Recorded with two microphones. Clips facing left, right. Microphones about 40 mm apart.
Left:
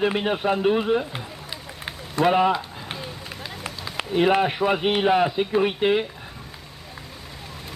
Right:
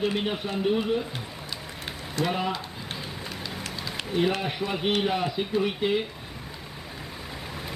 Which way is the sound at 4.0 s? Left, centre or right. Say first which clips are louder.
Left 8 dB; left.